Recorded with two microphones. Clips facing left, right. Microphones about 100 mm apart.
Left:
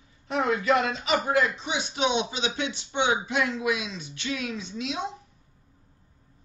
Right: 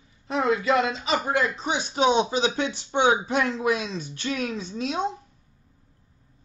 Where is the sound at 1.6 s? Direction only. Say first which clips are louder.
Right 5 dB; 45° right (ahead or behind).